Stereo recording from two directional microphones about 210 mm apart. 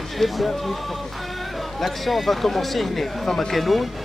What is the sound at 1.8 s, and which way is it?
Speech, centre (ahead or behind).